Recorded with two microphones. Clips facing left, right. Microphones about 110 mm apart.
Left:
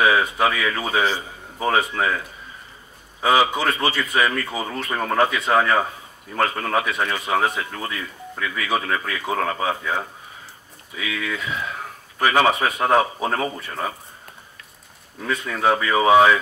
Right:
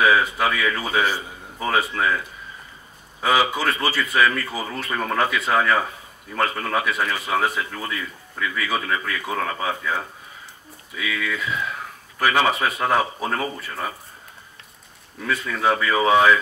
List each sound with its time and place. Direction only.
0.0 s speech: 25° left (ahead or behind)
3.3 s speech: 25° left (ahead or behind)
11.1 s speech: 30° left (ahead or behind)
15.2 s speech: 25° left (ahead or behind)